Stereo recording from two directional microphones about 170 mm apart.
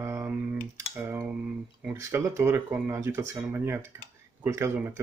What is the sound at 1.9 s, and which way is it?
Speech, 15° right (ahead or behind).